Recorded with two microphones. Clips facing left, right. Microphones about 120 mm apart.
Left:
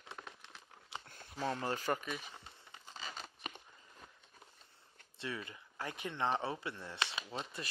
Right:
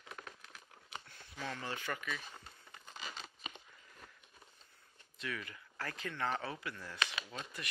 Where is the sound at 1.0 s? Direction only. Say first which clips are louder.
Left 7 dB; 50° left (ahead or behind).